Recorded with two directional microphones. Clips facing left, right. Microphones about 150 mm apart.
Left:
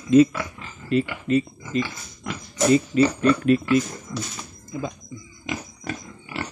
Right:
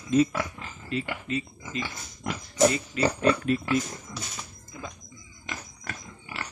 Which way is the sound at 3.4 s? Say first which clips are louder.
Left 7 dB; 75° left (ahead or behind).